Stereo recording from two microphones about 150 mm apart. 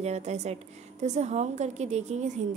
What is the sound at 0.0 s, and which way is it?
A woman's voice, 45° right (ahead or behind).